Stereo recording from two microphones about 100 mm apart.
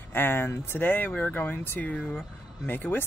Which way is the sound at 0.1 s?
20° left (ahead or behind).